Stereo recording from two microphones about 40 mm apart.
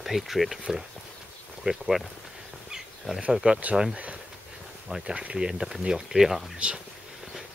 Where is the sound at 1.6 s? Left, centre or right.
Right.